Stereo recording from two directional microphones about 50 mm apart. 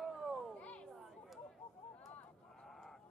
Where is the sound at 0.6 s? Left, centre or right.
Left.